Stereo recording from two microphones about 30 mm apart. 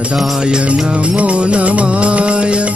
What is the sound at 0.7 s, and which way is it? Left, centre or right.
Music, right.